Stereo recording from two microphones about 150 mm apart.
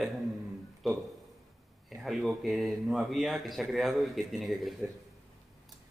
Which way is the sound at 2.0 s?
Centre (ahead or behind).